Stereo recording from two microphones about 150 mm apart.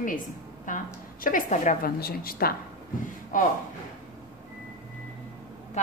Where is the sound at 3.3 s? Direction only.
65° left (ahead or behind).